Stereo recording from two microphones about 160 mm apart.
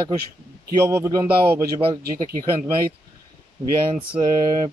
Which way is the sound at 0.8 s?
15° right (ahead or behind).